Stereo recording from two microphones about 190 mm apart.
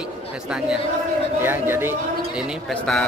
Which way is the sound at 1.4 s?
10° right (ahead or behind).